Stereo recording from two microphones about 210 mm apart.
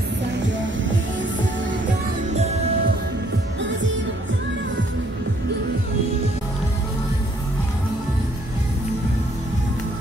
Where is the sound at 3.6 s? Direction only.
60° right (ahead or behind).